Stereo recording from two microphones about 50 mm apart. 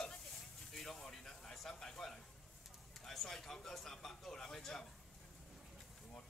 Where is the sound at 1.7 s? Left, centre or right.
Centre.